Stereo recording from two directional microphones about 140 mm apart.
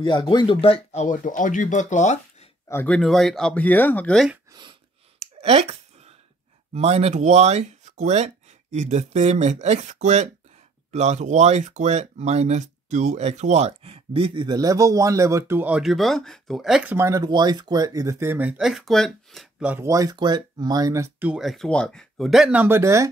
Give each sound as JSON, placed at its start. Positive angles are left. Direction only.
{"t": 0.0, "sound": "speech", "side_deg": 35}
{"t": 0.6, "sound": "speech", "side_deg": 45}
{"t": 1.0, "sound": "speech", "side_deg": 65}
{"t": 2.7, "sound": "speech", "side_deg": 15}
{"t": 3.0, "sound": "speech", "side_deg": 0}
{"t": 5.2, "sound": "a sound", "side_deg": -50}
{"t": 6.7, "sound": "speech", "side_deg": -50}
{"t": 16.9, "sound": "speech", "side_deg": -20}
{"t": 17.2, "sound": "speech", "side_deg": -30}
{"t": 19.6, "sound": "speech", "side_deg": -10}
{"t": 19.9, "sound": "speech", "side_deg": -25}
{"t": 21.2, "sound": "speech", "side_deg": -5}